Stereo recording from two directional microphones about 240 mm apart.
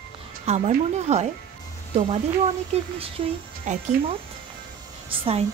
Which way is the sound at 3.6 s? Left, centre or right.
Right.